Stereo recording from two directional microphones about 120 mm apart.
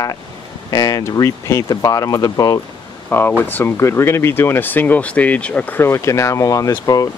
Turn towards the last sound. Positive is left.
turn(degrees=30)  # may be behind; listen again after turning